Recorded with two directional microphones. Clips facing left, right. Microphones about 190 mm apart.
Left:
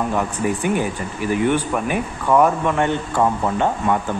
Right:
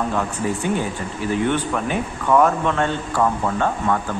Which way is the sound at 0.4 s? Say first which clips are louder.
Left 3 dB; 10° left (ahead or behind).